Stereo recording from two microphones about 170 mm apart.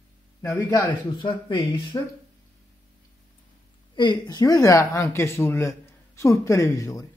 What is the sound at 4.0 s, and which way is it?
Speech, 25° left (ahead or behind).